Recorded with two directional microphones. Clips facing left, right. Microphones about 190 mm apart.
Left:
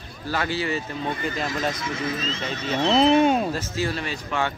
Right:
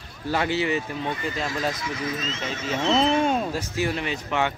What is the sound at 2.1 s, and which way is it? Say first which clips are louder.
Speech: left 1 dB; 35° left (ahead or behind).